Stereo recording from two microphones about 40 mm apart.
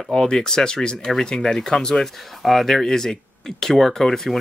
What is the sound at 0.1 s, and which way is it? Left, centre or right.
Speech, centre.